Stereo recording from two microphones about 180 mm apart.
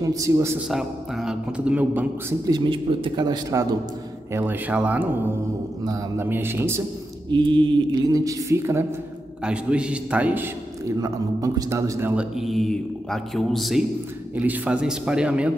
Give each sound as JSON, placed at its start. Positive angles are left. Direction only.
{"t": 0.0, "sound": "a man's voice", "side_deg": -20}
{"t": 0.7, "sound": "a man's voice", "side_deg": 0}
{"t": 2.4, "sound": "a woman's voice", "side_deg": -25}
{"t": 7.2, "sound": "a woman's voice", "side_deg": -25}
{"t": 12.4, "sound": "a man's voice", "side_deg": 0}